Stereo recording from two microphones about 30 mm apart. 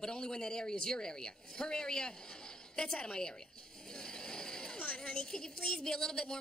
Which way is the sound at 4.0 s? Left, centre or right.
Left.